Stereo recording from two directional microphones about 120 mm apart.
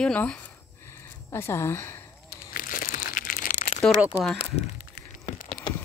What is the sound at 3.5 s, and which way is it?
Crumpling, 70° left (ahead or behind).